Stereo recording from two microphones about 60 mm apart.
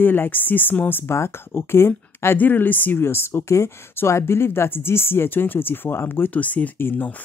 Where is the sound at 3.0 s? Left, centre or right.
Left.